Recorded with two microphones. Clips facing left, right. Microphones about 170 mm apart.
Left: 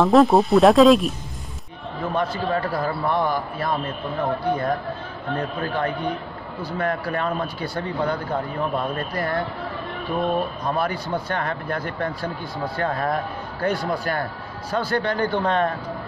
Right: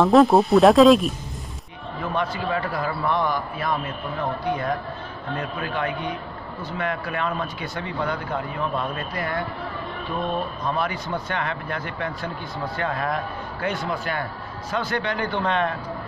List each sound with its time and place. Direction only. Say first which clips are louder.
0.0 s speech: even; centre (ahead or behind)
2.1 s speech: left 2 dB; 40° left (ahead or behind)
10.6 s speech: left 2 dB; 35° left (ahead or behind)